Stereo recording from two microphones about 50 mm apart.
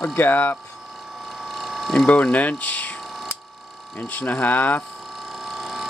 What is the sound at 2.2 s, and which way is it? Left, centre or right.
Speech, left.